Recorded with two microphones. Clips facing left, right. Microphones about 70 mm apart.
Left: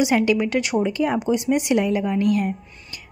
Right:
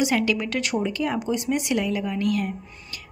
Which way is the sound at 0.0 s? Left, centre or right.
Centre.